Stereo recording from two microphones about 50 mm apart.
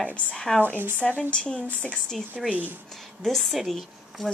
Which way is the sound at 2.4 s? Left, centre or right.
Centre.